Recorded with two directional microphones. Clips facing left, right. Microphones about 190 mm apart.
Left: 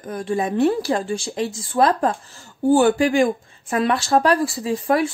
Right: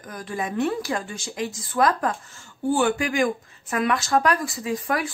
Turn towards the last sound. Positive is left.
turn(degrees=30)  # may be behind; listen again after turning